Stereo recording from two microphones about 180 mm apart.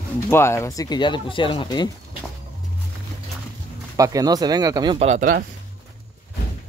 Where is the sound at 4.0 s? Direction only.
20° right (ahead or behind).